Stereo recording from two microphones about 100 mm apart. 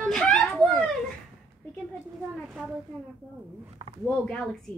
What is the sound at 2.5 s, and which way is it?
Speech, 10° right (ahead or behind).